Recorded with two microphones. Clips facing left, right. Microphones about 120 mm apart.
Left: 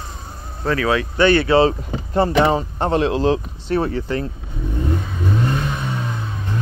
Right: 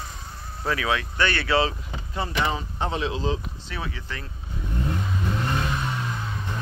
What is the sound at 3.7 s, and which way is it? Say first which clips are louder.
Speech: left 15 dB; 45° left (ahead or behind).